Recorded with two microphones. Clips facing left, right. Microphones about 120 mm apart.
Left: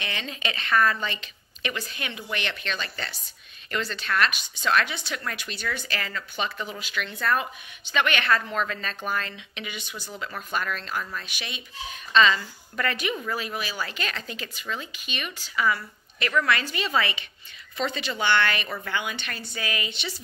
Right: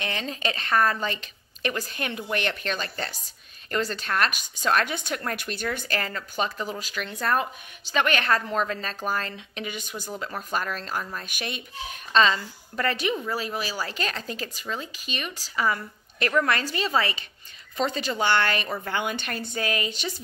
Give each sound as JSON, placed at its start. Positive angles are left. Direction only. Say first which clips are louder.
{"t": 0.0, "sound": "speech", "louder": "right 3 dB", "side_deg": -40}
{"t": 11.1, "sound": "speech", "louder": "right 3 dB", "side_deg": -50}
{"t": 12.2, "sound": "speech", "louder": "left 1 dB", "side_deg": -35}